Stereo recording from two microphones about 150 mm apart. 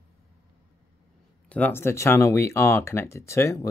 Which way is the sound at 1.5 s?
15° left (ahead or behind).